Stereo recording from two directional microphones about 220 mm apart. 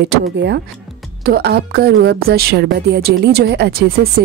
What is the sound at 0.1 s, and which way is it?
Speech, 50° right (ahead or behind).